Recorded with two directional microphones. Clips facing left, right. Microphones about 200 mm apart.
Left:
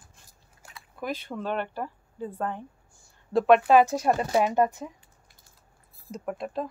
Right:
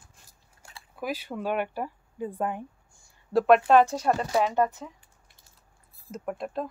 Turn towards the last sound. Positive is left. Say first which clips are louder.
# even
turn(degrees=0)  # may be behind; listen again after turning